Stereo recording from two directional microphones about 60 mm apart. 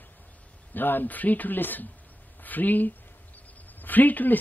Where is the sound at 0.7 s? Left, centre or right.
Left.